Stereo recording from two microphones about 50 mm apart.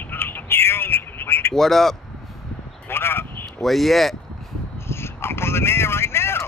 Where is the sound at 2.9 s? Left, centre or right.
Left.